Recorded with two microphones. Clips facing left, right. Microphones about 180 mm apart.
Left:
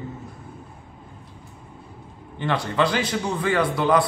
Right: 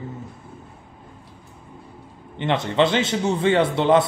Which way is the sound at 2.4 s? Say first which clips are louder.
Right 3 dB; 20° right (ahead or behind).